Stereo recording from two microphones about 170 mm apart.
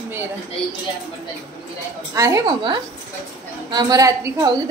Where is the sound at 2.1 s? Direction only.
20° right (ahead or behind).